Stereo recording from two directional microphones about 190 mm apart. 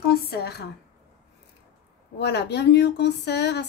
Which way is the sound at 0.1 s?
55° left (ahead or behind).